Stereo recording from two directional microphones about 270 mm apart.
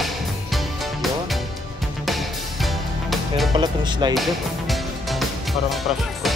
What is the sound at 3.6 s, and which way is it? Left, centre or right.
Speech, centre.